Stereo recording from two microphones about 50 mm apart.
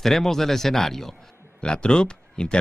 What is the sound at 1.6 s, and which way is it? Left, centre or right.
Speech, centre.